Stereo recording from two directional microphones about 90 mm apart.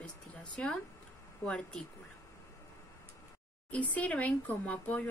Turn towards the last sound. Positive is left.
turn(degrees=15)  # may be behind; listen again after turning